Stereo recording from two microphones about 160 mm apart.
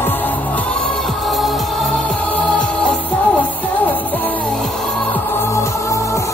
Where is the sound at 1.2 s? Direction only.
Centre (ahead or behind).